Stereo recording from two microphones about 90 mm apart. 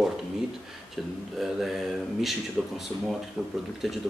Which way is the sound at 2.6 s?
Centre (ahead or behind).